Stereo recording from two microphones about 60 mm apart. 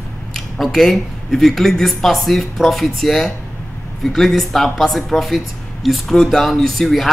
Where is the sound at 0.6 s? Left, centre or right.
Centre.